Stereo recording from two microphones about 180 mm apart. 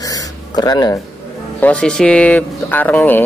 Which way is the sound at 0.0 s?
20° left (ahead or behind).